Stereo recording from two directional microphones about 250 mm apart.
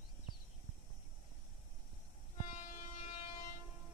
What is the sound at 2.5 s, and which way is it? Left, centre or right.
Train, left.